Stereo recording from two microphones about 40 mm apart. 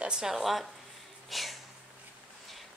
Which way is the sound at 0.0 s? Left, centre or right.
Centre.